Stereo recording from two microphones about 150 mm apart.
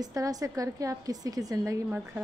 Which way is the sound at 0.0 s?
25° right (ahead or behind).